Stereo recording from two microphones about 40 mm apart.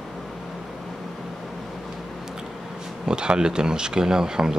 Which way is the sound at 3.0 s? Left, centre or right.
Right.